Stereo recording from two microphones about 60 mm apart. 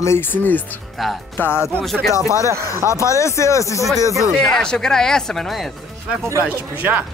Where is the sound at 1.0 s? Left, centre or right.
Centre.